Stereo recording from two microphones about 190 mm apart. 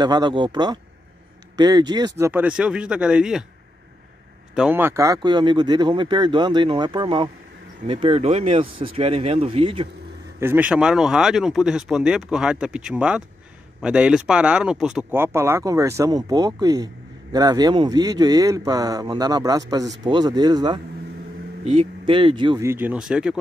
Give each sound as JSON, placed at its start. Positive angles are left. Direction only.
{"t": 0.0, "sound": "speech", "side_deg": -20}
{"t": 4.6, "sound": "speech", "side_deg": -10}
{"t": 10.4, "sound": "speech", "side_deg": -10}
{"t": 22.7, "sound": "speech", "side_deg": -10}